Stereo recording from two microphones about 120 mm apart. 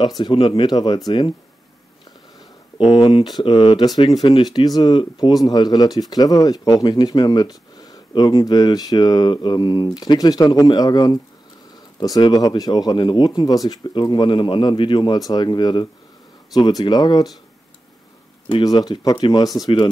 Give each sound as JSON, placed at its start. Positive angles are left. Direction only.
{"t": 0.2, "sound": "speech", "side_deg": 45}
{"t": 2.8, "sound": "speech", "side_deg": 45}
{"t": 3.8, "sound": "speech", "side_deg": 35}
{"t": 12.2, "sound": "speech", "side_deg": 35}
{"t": 18.6, "sound": "speech", "side_deg": 35}